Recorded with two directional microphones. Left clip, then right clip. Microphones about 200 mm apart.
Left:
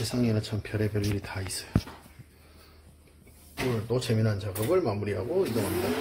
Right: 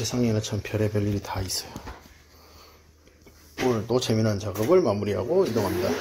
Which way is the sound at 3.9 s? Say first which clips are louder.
Right 5 dB; 25° right (ahead or behind).